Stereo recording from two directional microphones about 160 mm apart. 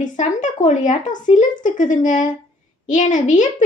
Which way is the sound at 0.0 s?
50° left (ahead or behind).